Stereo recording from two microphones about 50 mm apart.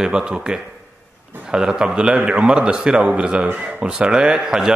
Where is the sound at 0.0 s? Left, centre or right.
Centre.